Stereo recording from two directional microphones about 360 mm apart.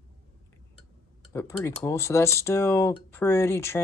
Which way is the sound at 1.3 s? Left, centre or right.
Centre.